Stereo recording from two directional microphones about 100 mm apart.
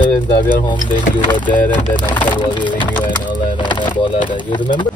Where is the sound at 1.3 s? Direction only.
50° left (ahead or behind).